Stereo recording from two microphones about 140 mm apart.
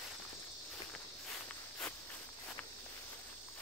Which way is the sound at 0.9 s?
5° left (ahead or behind).